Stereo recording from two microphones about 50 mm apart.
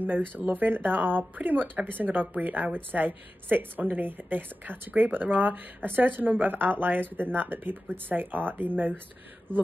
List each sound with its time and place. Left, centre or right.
0.3 s speech: right